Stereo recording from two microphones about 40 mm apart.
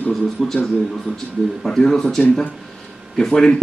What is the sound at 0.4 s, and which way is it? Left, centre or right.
A man's voice, centre.